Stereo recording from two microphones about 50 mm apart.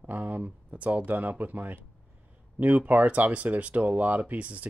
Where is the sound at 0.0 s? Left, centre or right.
Right.